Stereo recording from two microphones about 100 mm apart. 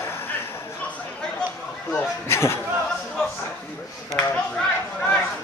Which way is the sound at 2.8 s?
5° left (ahead or behind).